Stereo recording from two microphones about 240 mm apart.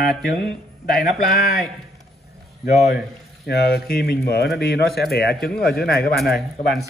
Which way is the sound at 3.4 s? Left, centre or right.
Left.